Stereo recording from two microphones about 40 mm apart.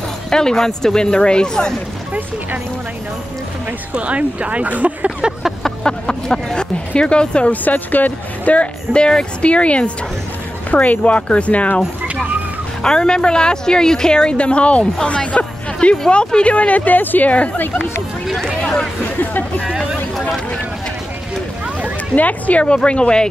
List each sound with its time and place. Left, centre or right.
0.3 s a woman's voice: centre
3.9 s speech: right
5.6 s a woman's voice: centre
7.6 s speech: left
8.9 s speech: left
12.8 s a woman's voice: centre; by 17.6 s left
18.6 s chatter: centre
22.1 s a woman's voice: left